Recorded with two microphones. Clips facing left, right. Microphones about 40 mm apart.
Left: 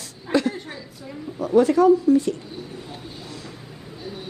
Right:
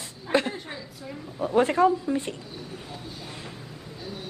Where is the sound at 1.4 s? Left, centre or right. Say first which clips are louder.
Left 5 dB; right.